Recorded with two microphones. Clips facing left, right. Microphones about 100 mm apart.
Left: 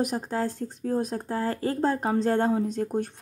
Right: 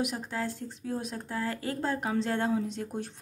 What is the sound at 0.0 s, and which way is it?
Speech, 40° left (ahead or behind).